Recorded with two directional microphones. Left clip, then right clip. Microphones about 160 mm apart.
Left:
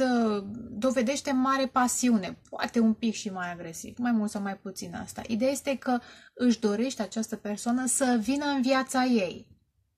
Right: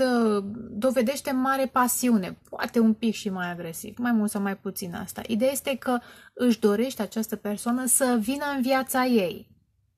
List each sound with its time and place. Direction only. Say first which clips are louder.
0.0 s a woman's voice: right 3 dB; 55° right (ahead or behind)